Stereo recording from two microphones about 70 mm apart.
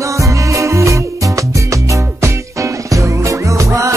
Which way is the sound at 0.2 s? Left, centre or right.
Right.